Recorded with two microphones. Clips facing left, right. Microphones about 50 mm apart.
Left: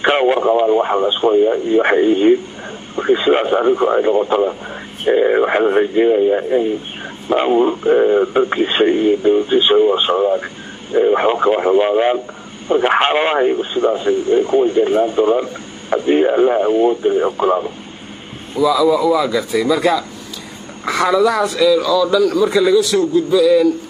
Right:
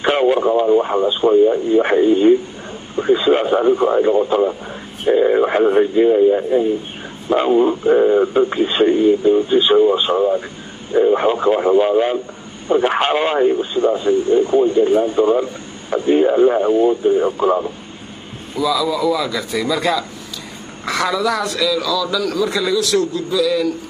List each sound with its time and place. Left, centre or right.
0.0 s radio: left
0.5 s speech: left
10.1 s a man's voice: centre
11.1 s speech: left
15.1 s a man's voice: centre
16.4 s a man's voice: centre
16.8 s speech: left
18.5 s a man's voice: centre
21.6 s a man's voice: centre